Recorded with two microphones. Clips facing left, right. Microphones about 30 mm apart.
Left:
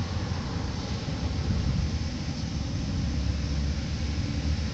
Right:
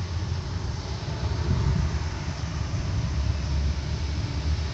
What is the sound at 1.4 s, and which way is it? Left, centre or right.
Vehicle, centre.